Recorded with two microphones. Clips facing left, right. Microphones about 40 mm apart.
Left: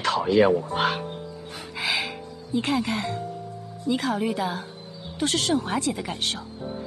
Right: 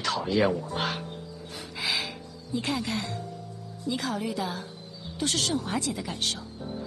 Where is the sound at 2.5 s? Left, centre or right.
Left.